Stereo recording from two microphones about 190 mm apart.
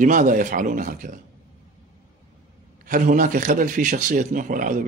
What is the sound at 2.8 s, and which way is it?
A man's voice, 45° right (ahead or behind).